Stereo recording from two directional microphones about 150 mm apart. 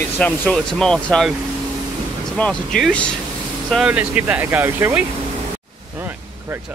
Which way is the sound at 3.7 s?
5° right (ahead or behind).